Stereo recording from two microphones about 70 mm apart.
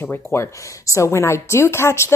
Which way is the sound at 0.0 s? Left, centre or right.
Left.